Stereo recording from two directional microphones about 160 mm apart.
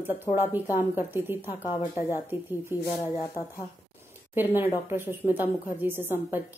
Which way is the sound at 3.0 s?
20° left (ahead or behind).